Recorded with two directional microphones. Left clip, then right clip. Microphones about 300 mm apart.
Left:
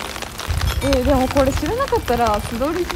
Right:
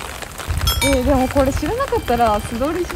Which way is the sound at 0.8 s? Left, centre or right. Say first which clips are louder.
Even; centre.